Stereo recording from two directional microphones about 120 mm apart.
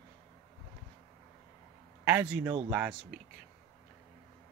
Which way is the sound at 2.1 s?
10° right (ahead or behind).